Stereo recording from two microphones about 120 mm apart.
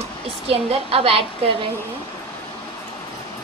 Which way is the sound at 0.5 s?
55° right (ahead or behind).